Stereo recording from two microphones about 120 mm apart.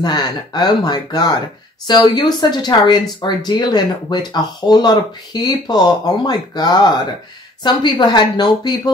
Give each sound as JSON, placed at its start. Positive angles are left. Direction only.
{"t": 0.0, "sound": "speech", "side_deg": 35}